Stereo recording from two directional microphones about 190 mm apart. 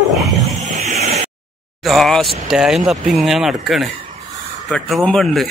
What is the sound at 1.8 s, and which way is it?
Vehicle, centre (ahead or behind).